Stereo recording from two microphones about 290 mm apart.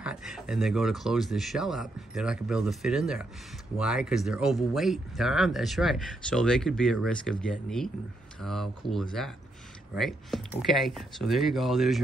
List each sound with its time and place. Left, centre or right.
0.0 s speech: centre